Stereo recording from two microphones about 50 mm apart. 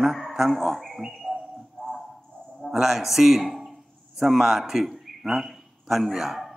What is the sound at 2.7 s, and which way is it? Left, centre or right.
A man's voice, centre.